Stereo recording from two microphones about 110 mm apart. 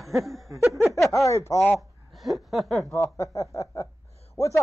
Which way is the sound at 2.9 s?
30° left (ahead or behind).